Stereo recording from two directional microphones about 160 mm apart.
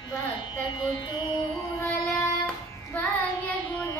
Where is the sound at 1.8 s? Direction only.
20° left (ahead or behind).